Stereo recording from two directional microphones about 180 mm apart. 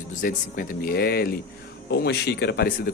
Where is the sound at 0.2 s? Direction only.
55° left (ahead or behind).